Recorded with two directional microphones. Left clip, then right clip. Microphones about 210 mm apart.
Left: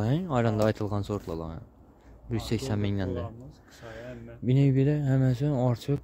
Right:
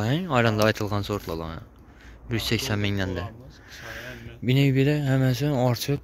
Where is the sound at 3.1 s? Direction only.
60° left (ahead or behind).